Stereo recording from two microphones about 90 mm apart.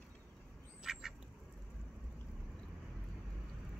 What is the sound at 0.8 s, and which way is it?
Duck, 5° right (ahead or behind).